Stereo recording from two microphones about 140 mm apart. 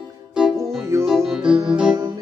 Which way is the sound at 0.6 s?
20° right (ahead or behind).